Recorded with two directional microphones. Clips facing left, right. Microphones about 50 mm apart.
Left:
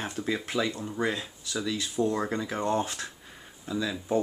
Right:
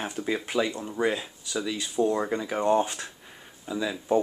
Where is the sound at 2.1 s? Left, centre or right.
Centre.